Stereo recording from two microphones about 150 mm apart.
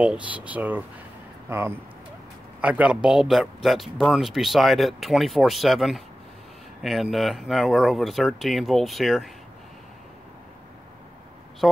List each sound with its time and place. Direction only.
0.0 s speech: 5° right (ahead or behind)
11.6 s speech: centre (ahead or behind)